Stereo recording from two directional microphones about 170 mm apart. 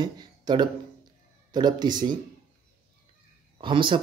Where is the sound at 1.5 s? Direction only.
25° right (ahead or behind).